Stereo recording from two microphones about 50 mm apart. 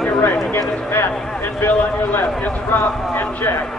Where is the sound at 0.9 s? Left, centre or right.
Left.